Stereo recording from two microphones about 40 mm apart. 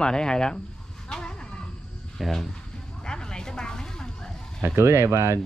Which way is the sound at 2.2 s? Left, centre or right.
Centre.